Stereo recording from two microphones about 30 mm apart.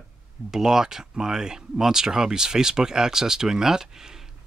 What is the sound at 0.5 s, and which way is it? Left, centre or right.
Speech, centre.